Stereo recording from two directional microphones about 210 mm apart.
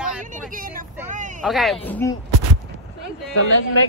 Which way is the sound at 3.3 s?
75° left (ahead or behind).